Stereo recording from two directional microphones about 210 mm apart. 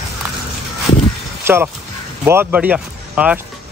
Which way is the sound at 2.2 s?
10° right (ahead or behind).